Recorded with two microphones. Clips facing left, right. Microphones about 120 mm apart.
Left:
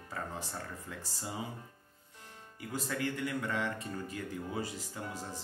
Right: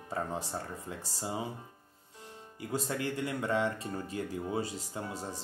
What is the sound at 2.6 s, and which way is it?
Speech, 30° right (ahead or behind).